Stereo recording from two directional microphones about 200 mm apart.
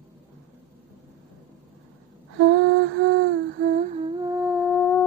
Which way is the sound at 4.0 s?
20° right (ahead or behind).